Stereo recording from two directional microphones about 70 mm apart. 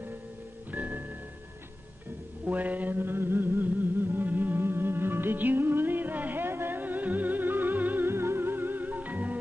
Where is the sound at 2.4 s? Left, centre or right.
Right.